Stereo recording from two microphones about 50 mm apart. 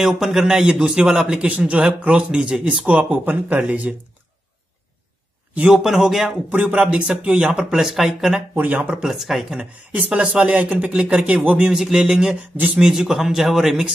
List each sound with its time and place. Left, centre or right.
0.0 s a man's voice: centre
2.9 s speech: right
5.7 s a man's voice: centre
6.5 s speech: right
7.8 s speech: centre
8.5 s speech: right
9.0 s a man's voice: centre
9.6 s speech: right
11.7 s a man's voice: centre